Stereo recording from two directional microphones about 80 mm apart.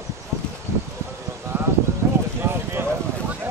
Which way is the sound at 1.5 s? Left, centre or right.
Right.